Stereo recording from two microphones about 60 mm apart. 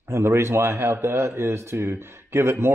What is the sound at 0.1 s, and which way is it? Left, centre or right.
A man's voice, right.